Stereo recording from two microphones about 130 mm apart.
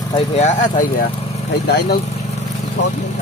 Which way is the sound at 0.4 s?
60° left (ahead or behind).